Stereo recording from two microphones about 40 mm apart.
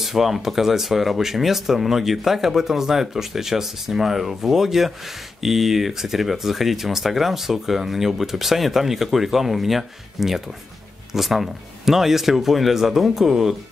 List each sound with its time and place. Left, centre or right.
0.0 s speech: centre